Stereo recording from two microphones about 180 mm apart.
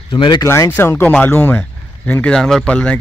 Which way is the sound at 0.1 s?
25° left (ahead or behind).